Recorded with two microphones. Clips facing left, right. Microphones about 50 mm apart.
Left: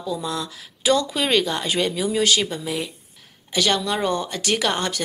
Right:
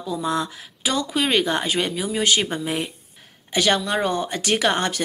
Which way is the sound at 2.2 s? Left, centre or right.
Right.